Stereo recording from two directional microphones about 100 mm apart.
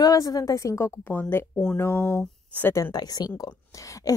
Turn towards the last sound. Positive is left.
turn(degrees=35)  # may be behind; listen again after turning